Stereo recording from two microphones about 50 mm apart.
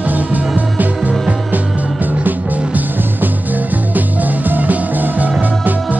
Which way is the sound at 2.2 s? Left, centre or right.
Right.